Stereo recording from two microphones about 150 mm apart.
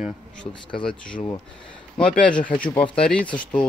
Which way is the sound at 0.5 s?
35° left (ahead or behind).